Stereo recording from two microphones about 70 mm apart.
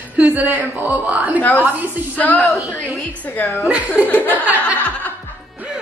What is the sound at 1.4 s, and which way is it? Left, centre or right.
Speech, left.